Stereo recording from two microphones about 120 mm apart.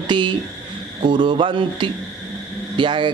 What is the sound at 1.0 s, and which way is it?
A man's voice, 40° right (ahead or behind).